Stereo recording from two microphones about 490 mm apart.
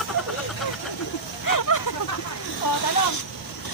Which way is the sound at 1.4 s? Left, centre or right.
Left.